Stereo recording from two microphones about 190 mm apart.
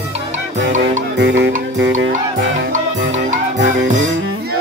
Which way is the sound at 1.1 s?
65° right (ahead or behind).